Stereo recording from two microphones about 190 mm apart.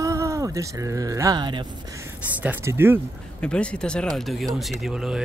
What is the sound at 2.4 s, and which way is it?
Speech, 10° right (ahead or behind).